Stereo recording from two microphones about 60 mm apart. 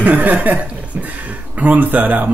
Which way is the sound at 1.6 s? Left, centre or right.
Right.